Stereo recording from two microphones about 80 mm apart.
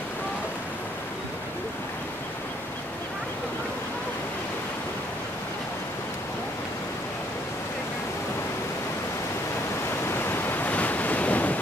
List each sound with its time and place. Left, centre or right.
10.1 s waves: left